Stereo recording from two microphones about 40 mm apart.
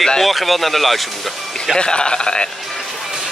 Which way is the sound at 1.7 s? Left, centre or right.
Left.